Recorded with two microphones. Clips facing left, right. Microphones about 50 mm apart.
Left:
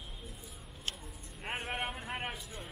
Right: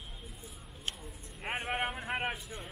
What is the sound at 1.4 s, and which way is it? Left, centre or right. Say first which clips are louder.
Vehicle: right 3 dB; centre.